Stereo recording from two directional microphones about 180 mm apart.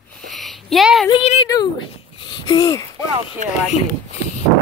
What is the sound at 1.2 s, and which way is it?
Speech, 35° left (ahead or behind).